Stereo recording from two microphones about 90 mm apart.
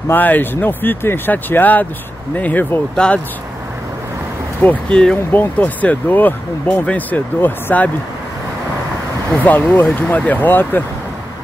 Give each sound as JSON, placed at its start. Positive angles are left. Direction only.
{"t": 0.1, "sound": "speech", "side_deg": 20}
{"t": 4.6, "sound": "speech", "side_deg": 10}
{"t": 9.3, "sound": "speech", "side_deg": 20}